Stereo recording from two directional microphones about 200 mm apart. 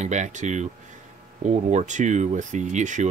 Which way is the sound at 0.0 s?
35° right (ahead or behind).